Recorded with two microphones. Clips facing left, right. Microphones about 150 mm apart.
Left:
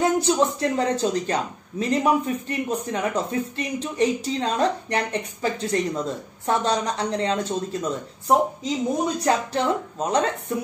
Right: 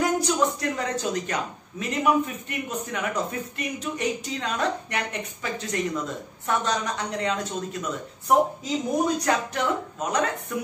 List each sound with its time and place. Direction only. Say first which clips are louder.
0.0 s a man's voice: left 3 dB; 30° left (ahead or behind)